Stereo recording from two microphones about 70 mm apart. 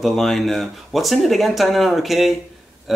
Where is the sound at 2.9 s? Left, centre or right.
Centre.